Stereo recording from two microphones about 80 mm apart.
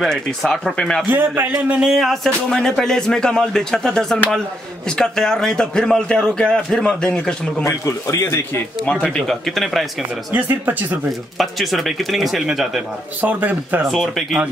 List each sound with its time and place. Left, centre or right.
0.0 s a man's voice: centre
1.1 s speech: right
1.7 s a man's voice: centre
7.6 s speech: left
9.1 s speech: centre
10.3 s speech: right
11.3 s speech: centre
13.2 s speech: right
13.8 s speech: centre